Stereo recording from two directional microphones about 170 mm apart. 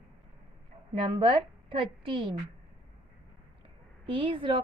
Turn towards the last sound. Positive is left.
turn(degrees=-30)  # may be behind; listen again after turning